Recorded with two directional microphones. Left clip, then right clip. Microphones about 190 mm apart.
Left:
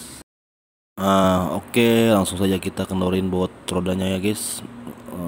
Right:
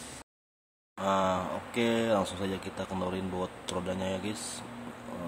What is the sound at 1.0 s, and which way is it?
Speech, 40° left (ahead or behind).